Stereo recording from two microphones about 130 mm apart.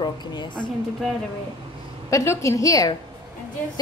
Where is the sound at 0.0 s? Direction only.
35° left (ahead or behind).